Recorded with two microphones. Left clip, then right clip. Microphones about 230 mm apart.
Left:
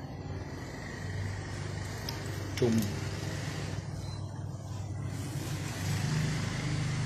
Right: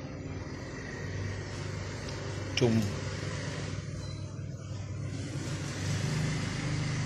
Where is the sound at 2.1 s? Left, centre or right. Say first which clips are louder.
Even; centre.